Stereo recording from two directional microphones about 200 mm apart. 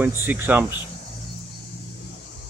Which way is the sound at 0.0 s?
10° right (ahead or behind).